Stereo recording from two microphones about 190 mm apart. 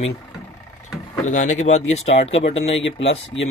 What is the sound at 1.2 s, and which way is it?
Speech, 40° left (ahead or behind).